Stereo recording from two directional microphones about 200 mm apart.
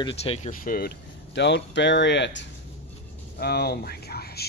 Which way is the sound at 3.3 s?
50° left (ahead or behind).